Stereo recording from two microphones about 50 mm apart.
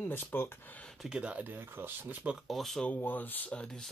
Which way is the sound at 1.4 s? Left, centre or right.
Right.